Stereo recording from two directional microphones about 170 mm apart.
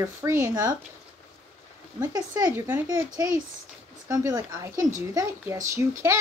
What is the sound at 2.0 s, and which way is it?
Speech, 20° right (ahead or behind).